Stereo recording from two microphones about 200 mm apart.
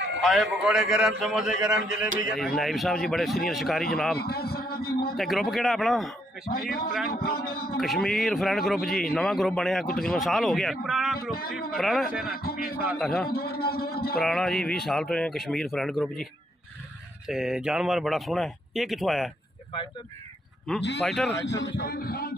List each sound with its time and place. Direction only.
0.2 s speech: centre (ahead or behind)
4.2 s a man's voice: 50° left (ahead or behind)
5.1 s speech: centre (ahead or behind)
6.4 s a man's voice: 45° left (ahead or behind)
7.8 s speech: centre (ahead or behind)
12.2 s a man's voice: 50° left (ahead or behind)
14.2 s speech: centre (ahead or behind)
17.3 s speech: 5° right (ahead or behind)
20.7 s speech: centre (ahead or behind)
21.5 s a man's voice: 60° left (ahead or behind)